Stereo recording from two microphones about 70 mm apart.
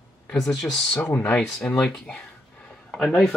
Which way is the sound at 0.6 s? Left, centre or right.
Centre.